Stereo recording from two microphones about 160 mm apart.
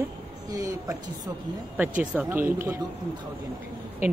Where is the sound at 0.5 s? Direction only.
20° right (ahead or behind).